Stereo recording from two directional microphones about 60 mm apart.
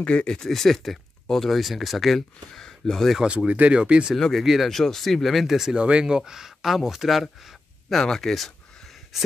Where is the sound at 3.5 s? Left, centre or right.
Right.